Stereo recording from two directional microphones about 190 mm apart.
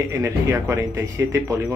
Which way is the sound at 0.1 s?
15° right (ahead or behind).